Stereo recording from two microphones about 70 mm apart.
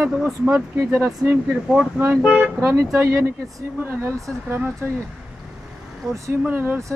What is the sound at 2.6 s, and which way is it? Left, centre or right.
Speech, right.